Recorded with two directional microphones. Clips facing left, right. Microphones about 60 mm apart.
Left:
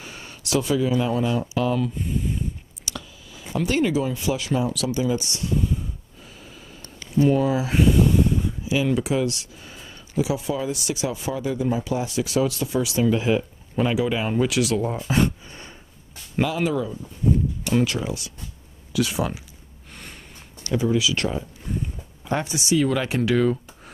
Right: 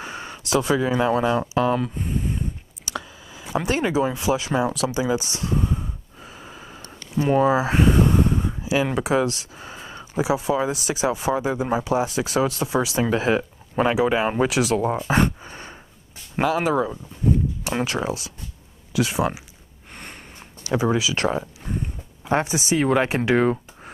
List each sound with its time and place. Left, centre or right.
0.0 s a sound: right
1.2 s speech: right
2.9 s speech: right
5.4 s speech: right
15.5 s a sound: right
16.3 s speech: right
19.9 s gasp: right
20.7 s speech: right